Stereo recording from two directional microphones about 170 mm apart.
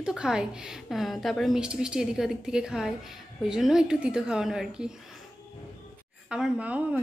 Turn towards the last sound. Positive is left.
turn(degrees=-10)  # may be behind; listen again after turning